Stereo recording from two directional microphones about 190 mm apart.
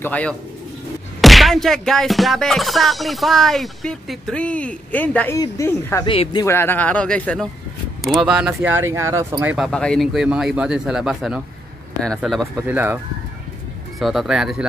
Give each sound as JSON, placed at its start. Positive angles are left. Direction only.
{"t": 0.0, "sound": "speech", "side_deg": 5}
{"t": 1.2, "sound": "music", "side_deg": 0}
{"t": 5.4, "sound": "speech", "side_deg": 15}
{"t": 6.0, "sound": "speech", "side_deg": 25}
{"t": 6.4, "sound": "speech", "side_deg": 10}
{"t": 9.7, "sound": "music", "side_deg": 5}
{"t": 12.6, "sound": "speech", "side_deg": -10}
{"t": 13.9, "sound": "music", "side_deg": 0}